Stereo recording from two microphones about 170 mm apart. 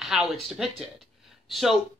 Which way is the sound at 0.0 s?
Centre (ahead or behind).